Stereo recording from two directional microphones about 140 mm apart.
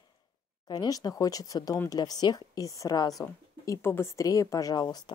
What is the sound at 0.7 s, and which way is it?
A woman's voice, 30° left (ahead or behind).